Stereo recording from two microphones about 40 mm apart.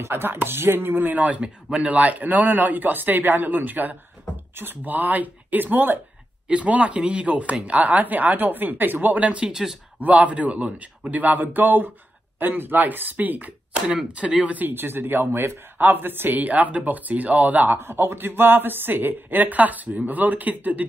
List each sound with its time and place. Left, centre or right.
0.0 s speech: right
1.4 s a man's voice: right
1.9 s speech: right
6.4 s speech: right
9.5 s speech: centre
10.2 s speech: right
14.1 s speech: right
14.7 s speech: right
16.3 s speech: right
17.7 s speech: right